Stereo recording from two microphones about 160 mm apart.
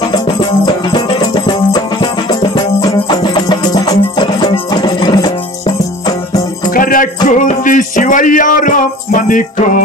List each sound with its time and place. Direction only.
0.9 s music: 30° left (ahead or behind)
6.7 s music: 60° left (ahead or behind)